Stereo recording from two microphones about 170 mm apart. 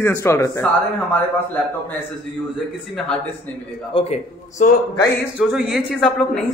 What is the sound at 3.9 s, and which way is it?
Speech, 40° left (ahead or behind).